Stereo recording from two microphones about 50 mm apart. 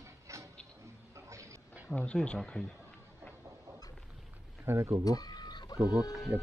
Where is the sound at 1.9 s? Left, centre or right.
Left.